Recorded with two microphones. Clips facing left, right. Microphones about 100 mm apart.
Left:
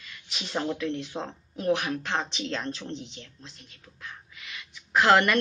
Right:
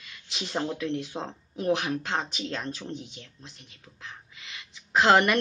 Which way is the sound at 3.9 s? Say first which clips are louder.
Left 1 dB; 25° right (ahead or behind).